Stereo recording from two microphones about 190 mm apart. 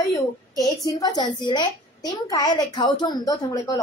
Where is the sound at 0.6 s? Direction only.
20° left (ahead or behind).